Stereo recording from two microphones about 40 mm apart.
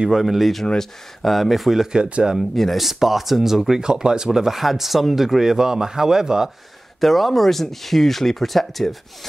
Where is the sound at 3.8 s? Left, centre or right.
Centre.